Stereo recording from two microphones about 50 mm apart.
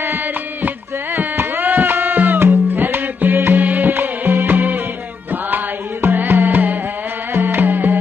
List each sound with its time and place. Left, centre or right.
0.0 s music: right
6.1 s music: right